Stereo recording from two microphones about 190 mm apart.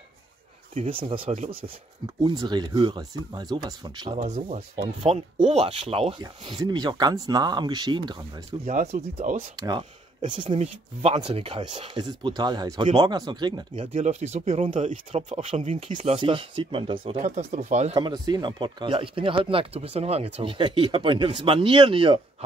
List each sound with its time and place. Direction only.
0.7 s speech: 30° right (ahead or behind)
4.2 s speech: 35° right (ahead or behind)
8.6 s speech: 40° right (ahead or behind)
9.6 s speech: 25° right (ahead or behind)
17.9 s speech: 20° right (ahead or behind)